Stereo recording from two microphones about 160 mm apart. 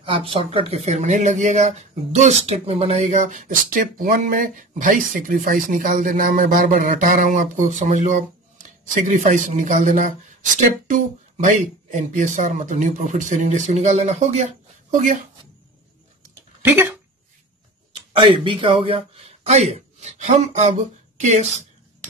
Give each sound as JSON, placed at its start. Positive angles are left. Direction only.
{"t": 0.0, "sound": "speech", "side_deg": -35}
{"t": 16.6, "sound": "speech", "side_deg": -15}
{"t": 18.1, "sound": "speech", "side_deg": -30}